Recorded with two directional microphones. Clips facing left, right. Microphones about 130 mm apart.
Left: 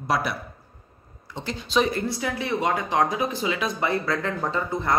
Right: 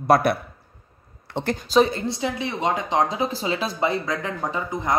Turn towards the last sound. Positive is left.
turn(degrees=-15)  # may be behind; listen again after turning